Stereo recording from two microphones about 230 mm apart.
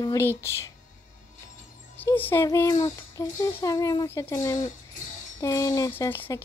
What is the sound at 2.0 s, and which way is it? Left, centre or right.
A woman's voice, centre.